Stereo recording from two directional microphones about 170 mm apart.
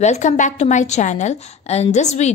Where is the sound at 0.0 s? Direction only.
45° left (ahead or behind).